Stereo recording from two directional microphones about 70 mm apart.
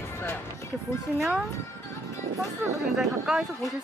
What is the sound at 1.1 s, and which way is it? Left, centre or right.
Speech, centre.